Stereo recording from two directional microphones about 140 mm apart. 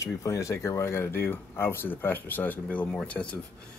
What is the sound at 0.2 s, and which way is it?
Speech, 20° left (ahead or behind).